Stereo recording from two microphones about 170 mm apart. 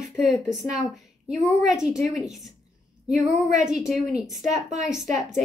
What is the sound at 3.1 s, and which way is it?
Speech, 45° right (ahead or behind).